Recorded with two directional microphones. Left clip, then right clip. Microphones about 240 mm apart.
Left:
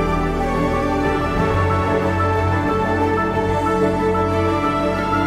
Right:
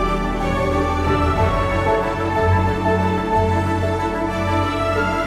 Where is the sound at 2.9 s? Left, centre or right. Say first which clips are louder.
Even; centre.